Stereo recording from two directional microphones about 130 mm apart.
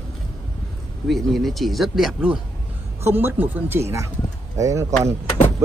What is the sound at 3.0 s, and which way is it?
Speech, 15° right (ahead or behind).